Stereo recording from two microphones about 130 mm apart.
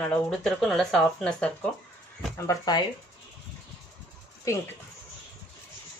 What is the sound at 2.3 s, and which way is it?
Speech, 25° left (ahead or behind).